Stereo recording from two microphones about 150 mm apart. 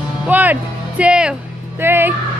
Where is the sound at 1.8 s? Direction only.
15° right (ahead or behind).